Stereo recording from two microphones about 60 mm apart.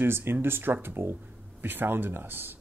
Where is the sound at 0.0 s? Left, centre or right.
Right.